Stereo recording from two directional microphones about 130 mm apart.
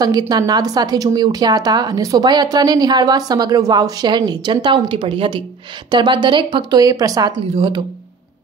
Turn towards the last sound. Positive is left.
turn(degrees=-35)  # may be behind; listen again after turning